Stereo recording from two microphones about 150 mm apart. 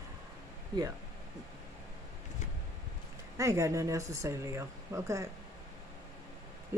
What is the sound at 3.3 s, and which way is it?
A woman's voice, 20° right (ahead or behind).